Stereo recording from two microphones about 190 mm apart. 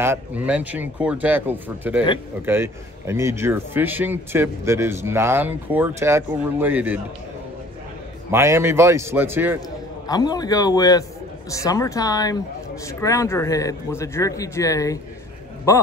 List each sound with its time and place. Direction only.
0.0 s speech: 10° right (ahead or behind)
8.3 s speech: 15° right (ahead or behind)
10.0 s a man's voice: 20° left (ahead or behind)